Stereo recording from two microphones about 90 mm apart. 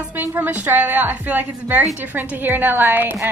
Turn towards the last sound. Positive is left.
turn(degrees=-25)  # may be behind; listen again after turning